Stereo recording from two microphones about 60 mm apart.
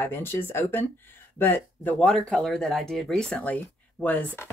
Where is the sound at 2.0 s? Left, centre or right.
Centre.